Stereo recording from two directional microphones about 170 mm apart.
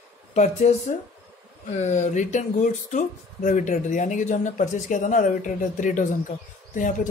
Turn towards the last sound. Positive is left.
turn(degrees=50)  # may be behind; listen again after turning